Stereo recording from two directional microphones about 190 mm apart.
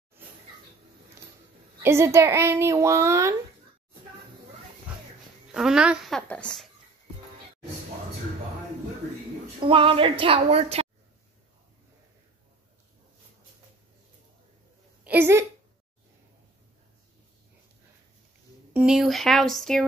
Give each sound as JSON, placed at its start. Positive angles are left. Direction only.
{"t": 1.8, "sound": "speech", "side_deg": -15}
{"t": 5.5, "sound": "speech", "side_deg": 0}
{"t": 9.6, "sound": "a woman's voice", "side_deg": -25}
{"t": 15.0, "sound": "speech", "side_deg": -10}
{"t": 18.7, "sound": "speech", "side_deg": -5}